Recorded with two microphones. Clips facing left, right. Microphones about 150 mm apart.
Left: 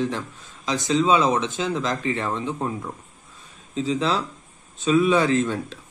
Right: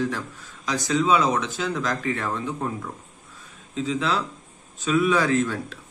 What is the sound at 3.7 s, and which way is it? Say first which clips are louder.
Speech: left 2 dB; 30° left (ahead or behind).